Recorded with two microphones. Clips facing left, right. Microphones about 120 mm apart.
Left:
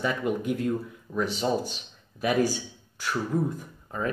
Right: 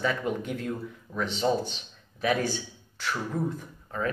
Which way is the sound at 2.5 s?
10° left (ahead or behind).